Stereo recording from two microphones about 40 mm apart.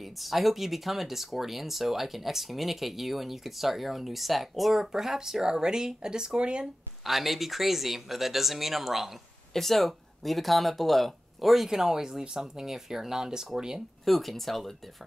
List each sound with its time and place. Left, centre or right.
0.0 s speech: centre; by 6.7 s right
7.1 s speech: centre
9.5 s speech: centre
11.7 s speech: centre
14.0 s speech: centre